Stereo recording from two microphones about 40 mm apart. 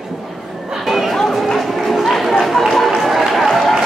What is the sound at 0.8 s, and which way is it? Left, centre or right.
Chatter, centre.